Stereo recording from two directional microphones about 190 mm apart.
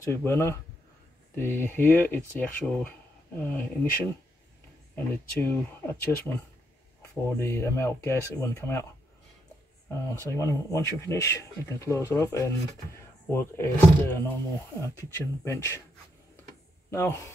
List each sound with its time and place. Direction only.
0.0 s speech: 15° left (ahead or behind)
9.8 s speech: 15° left (ahead or behind)
15.4 s speech: 15° left (ahead or behind)
16.9 s speech: 15° left (ahead or behind)